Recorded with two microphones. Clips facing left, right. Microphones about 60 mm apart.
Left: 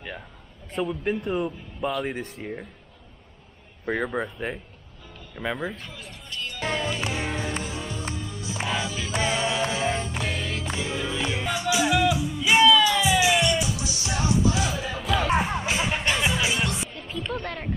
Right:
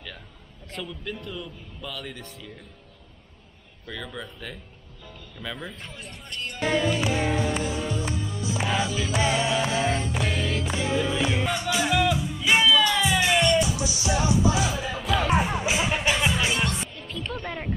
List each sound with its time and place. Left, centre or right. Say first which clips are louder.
0.8 s speech: left 10 dB; left
3.8 s speech: left 10 dB; left
5.6 s speech: left 5 dB; centre
6.7 s music: right 5 dB; centre
13.8 s music: right 2 dB; right
14.6 s music: right 1 dB; centre
17.4 s a sound: even; centre